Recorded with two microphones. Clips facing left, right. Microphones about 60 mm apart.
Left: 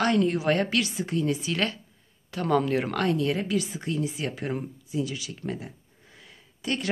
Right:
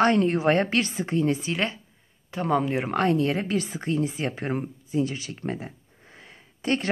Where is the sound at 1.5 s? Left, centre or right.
Right.